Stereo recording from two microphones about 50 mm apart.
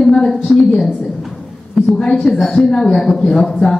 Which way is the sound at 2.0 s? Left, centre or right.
Left.